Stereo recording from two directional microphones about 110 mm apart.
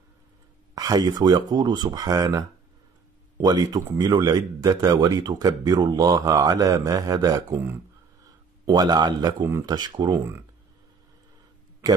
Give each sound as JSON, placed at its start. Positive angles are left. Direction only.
{"t": 0.7, "sound": "a man's voice", "side_deg": -35}